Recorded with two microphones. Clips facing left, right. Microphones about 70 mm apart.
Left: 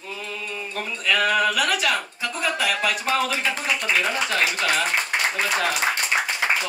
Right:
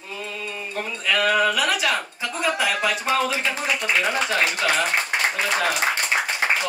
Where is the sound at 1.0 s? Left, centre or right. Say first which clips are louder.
Right 1 dB; centre.